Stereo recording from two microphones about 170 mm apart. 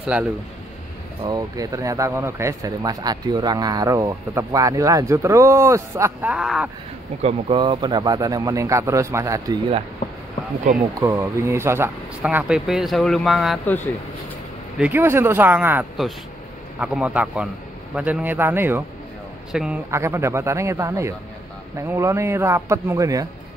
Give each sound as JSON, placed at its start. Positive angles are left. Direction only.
{"t": 0.0, "sound": "a man's voice", "side_deg": -10}
{"t": 1.2, "sound": "speech", "side_deg": -20}
{"t": 6.3, "sound": "a man's voice", "side_deg": -5}
{"t": 7.2, "sound": "speech", "side_deg": -30}
{"t": 11.0, "sound": "speech", "side_deg": -20}
{"t": 14.8, "sound": "a man's voice", "side_deg": -10}
{"t": 19.9, "sound": "speech", "side_deg": -15}